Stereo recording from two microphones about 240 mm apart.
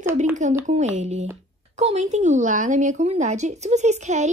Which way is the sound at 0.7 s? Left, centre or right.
Right.